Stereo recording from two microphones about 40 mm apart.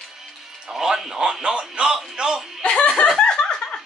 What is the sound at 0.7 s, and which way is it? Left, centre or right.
A man's voice, centre.